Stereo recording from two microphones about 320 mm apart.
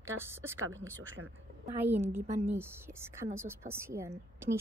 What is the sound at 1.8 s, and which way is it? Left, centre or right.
A woman's voice, centre.